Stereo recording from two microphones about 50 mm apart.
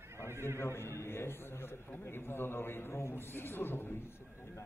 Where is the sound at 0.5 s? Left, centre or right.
Left.